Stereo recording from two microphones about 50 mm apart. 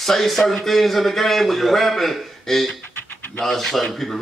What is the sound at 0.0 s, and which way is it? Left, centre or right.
Speech, centre.